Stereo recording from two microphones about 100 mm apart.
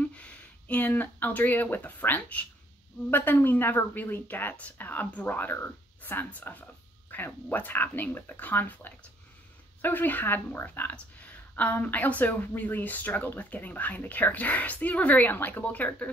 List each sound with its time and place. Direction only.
0.0 s speech: 15° left (ahead or behind)